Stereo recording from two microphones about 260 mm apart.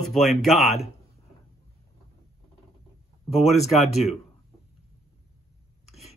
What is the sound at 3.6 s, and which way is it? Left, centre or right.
Speech, centre.